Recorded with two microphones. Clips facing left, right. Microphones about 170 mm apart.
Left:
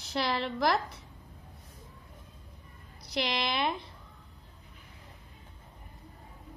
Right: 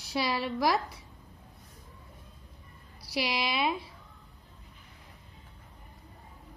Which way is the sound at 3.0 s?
10° right (ahead or behind).